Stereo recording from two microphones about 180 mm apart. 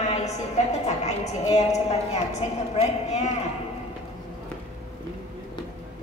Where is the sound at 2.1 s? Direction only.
40° left (ahead or behind).